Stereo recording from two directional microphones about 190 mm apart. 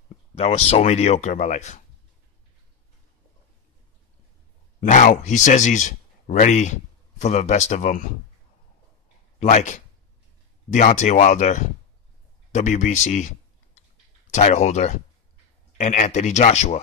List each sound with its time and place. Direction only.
0.3 s speech: 35° left (ahead or behind)
4.7 s speech: 45° left (ahead or behind)
9.4 s speech: 40° left (ahead or behind)
14.3 s speech: 35° left (ahead or behind)